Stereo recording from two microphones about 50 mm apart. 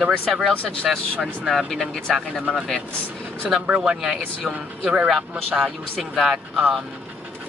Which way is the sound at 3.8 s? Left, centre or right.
Centre.